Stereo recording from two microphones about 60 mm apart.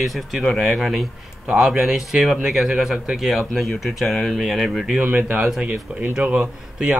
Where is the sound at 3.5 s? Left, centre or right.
Centre.